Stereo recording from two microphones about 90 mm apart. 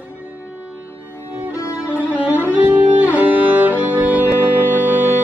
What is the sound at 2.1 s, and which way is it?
Music, 15° right (ahead or behind).